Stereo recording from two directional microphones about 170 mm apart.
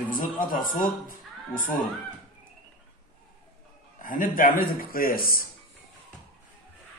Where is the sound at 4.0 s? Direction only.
55° left (ahead or behind).